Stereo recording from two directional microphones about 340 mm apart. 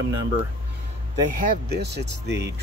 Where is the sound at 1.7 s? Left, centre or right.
Right.